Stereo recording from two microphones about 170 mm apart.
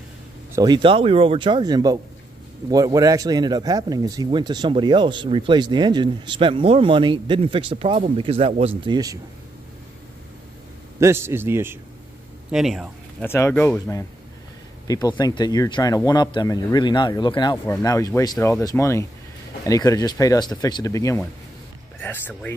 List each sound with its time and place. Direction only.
0.5 s speech: 25° right (ahead or behind)
11.0 s a man's voice: 15° right (ahead or behind)
12.4 s speech: 5° right (ahead or behind)
13.2 s speech: 15° left (ahead or behind)